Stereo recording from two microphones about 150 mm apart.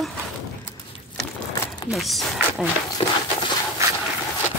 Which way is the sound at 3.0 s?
40° left (ahead or behind).